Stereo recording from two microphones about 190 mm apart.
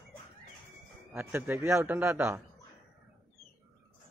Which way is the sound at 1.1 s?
10° right (ahead or behind).